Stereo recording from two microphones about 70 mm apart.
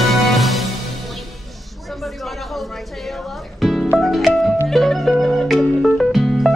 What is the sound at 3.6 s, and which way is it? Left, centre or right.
Music, centre.